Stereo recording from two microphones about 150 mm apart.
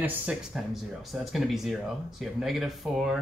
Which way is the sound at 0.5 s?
Centre (ahead or behind).